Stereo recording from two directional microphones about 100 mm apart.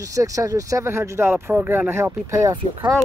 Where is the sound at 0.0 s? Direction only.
35° right (ahead or behind).